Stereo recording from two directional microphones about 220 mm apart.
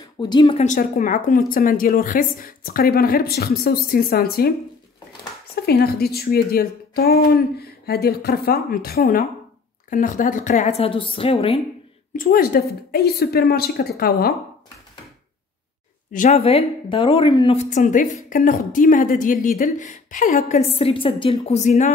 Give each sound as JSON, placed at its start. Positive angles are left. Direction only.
{"t": 0.0, "sound": "speech", "side_deg": 20}
{"t": 0.7, "sound": "speech", "side_deg": 35}
{"t": 5.7, "sound": "speech", "side_deg": 45}
{"t": 12.2, "sound": "speech", "side_deg": 40}
{"t": 16.1, "sound": "speech", "side_deg": 35}